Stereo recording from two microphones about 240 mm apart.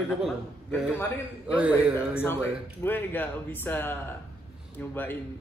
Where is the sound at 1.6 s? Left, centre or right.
Centre.